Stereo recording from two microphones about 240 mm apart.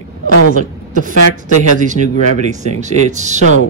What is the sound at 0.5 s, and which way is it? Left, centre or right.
A woman's voice, right.